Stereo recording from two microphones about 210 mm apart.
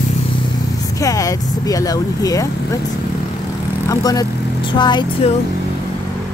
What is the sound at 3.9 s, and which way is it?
Speech, 15° left (ahead or behind).